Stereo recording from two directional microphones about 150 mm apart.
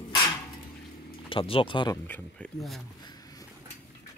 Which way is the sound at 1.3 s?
35° left (ahead or behind).